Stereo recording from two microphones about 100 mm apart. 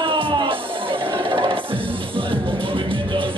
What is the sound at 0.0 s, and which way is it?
Music, 60° right (ahead or behind).